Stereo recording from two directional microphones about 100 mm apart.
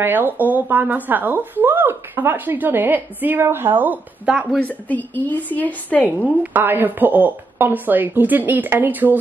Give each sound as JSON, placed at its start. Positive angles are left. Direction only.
{"t": 0.0, "sound": "speech", "side_deg": -20}
{"t": 4.6, "sound": "a woman's voice", "side_deg": 15}
{"t": 6.0, "sound": "speech", "side_deg": -15}